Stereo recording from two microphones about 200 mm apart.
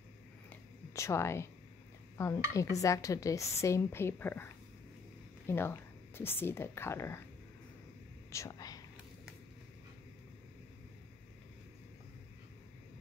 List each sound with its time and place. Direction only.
0.5 s a sound: 15° left (ahead or behind)
2.1 s stir: 15° left (ahead or behind)
2.8 s speech: 15° left (ahead or behind)
5.5 s speech: 10° left (ahead or behind)
8.3 s speech: 15° left (ahead or behind)